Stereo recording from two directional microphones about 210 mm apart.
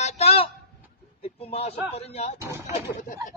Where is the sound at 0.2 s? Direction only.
30° left (ahead or behind).